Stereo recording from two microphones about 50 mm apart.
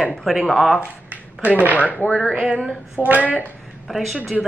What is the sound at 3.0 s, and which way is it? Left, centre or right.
Speech, right.